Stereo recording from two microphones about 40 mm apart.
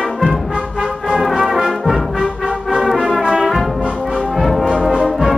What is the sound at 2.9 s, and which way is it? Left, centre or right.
Brass instrument, centre.